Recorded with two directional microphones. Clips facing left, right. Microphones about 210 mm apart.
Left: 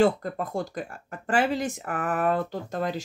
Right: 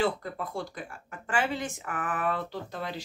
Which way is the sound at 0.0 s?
45° left (ahead or behind).